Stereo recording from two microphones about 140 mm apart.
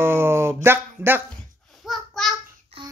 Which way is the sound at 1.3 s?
Centre (ahead or behind).